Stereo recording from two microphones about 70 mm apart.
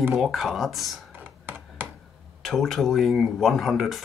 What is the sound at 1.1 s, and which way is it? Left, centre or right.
Computer keyboard, right.